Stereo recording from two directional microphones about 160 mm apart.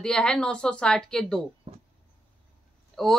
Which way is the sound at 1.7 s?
35° right (ahead or behind).